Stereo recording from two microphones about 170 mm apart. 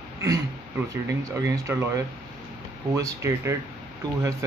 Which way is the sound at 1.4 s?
20° right (ahead or behind).